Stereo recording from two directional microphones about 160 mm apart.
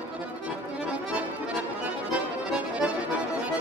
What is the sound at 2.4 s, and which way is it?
Music, 5° right (ahead or behind).